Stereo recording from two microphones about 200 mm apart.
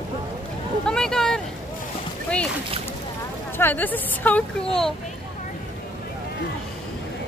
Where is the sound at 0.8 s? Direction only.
5° left (ahead or behind).